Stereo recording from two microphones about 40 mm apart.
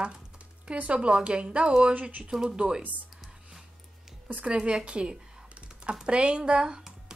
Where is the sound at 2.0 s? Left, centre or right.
Right.